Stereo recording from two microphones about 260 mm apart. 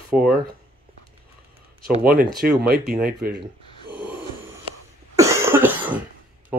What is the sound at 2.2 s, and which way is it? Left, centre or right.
Speech, centre.